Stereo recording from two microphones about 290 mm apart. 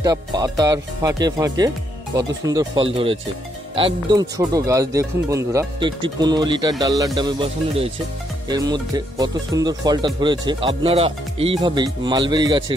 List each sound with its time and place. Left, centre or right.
0.0 s speech: centre